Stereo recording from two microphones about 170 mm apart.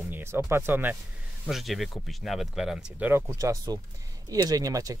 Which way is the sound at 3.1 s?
15° right (ahead or behind).